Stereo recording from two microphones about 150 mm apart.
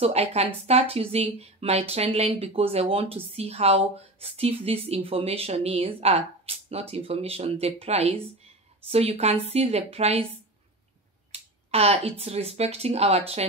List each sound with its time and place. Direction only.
0.0 s speech: 45° right (ahead or behind)
11.3 s speech: 40° right (ahead or behind)